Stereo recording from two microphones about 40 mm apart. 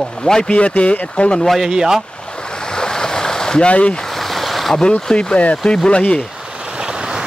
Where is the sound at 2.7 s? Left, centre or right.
Centre.